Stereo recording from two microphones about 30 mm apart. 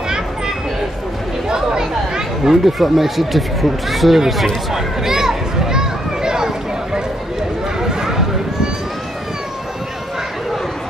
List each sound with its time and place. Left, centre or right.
1.5 s chatter: right
2.6 s speech: centre
4.7 s a sound: centre